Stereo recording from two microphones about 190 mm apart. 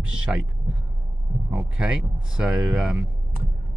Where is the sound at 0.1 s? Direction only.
5° right (ahead or behind).